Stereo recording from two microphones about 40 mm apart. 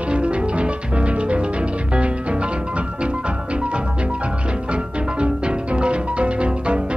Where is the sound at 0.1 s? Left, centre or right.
Right.